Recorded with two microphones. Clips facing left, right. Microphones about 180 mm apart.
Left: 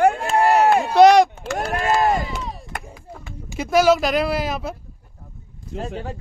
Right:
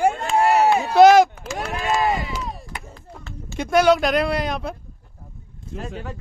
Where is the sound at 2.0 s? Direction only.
Centre (ahead or behind).